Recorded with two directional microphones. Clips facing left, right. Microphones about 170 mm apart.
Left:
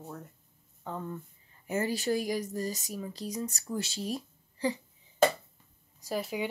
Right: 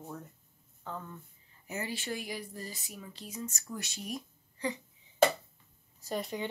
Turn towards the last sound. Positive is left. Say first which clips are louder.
# left 3 dB
turn(degrees=5)  # may be behind; listen again after turning